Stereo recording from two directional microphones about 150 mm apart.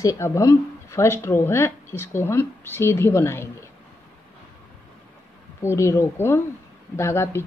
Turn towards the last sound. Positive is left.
turn(degrees=15)  # may be behind; listen again after turning